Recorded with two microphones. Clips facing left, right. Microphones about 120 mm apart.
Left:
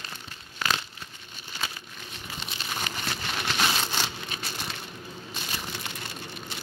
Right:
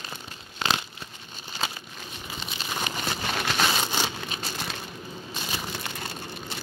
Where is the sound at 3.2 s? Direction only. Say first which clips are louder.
Right 3 dB; 45° right (ahead or behind).